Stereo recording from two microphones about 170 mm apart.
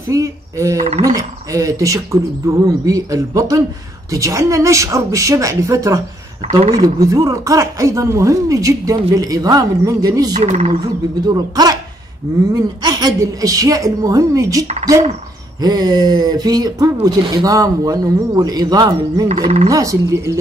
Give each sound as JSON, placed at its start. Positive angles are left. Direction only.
{"t": 0.1, "sound": "speech", "side_deg": -20}
{"t": 10.4, "sound": "speech", "side_deg": -45}
{"t": 11.2, "sound": "speech", "side_deg": -25}
{"t": 19.7, "sound": "speech", "side_deg": -20}